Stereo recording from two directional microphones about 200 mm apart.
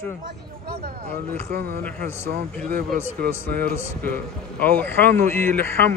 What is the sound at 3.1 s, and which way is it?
Speech, 50° right (ahead or behind).